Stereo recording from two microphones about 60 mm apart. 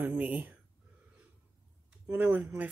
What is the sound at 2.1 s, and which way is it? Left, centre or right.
Speech, right.